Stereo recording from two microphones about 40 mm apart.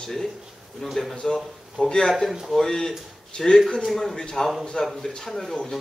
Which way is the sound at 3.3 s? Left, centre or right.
Left.